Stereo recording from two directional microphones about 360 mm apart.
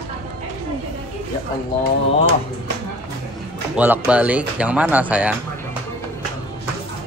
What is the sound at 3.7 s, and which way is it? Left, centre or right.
Speech, centre.